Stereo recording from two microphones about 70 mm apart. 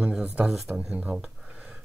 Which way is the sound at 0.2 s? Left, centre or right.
Centre.